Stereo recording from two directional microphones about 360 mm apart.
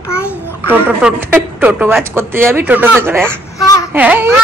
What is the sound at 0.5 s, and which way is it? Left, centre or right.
A woman's voice, centre.